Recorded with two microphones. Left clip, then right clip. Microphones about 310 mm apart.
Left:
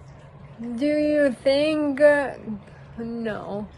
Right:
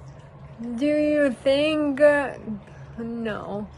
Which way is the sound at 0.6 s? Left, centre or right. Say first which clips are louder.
Even; centre.